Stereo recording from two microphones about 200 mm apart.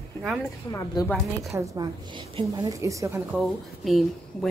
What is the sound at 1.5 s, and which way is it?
A woman's voice, 15° right (ahead or behind).